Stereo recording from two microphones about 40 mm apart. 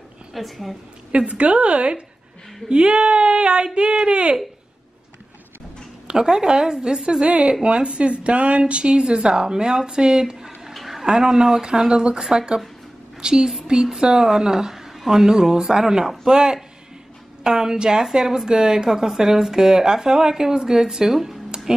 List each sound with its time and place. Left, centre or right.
0.3 s a woman's voice: centre
1.1 s a woman's voice: right
6.0 s speech: centre
10.7 s a sound: centre
11.1 s a woman's voice: centre